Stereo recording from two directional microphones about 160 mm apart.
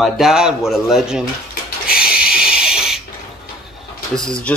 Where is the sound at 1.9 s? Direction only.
5° right (ahead or behind).